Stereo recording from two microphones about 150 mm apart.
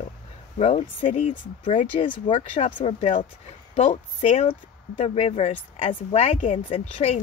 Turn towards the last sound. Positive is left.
turn(degrees=45)  # may be behind; listen again after turning